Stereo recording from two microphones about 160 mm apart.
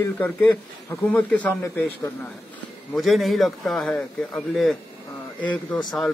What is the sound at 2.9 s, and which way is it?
A man's voice, centre (ahead or behind).